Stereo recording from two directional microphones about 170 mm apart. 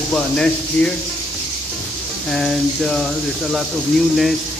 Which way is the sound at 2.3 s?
Centre (ahead or behind).